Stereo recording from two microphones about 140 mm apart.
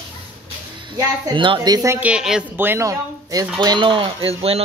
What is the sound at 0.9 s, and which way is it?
A woman's voice, 30° right (ahead or behind).